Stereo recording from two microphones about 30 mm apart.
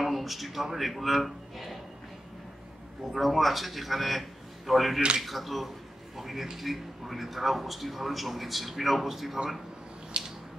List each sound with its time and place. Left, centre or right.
0.0 s speech: centre
3.1 s a man's voice: centre
10.1 s squish: right